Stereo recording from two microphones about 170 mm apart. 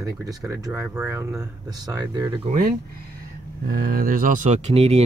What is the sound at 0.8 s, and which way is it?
Speech, 10° right (ahead or behind).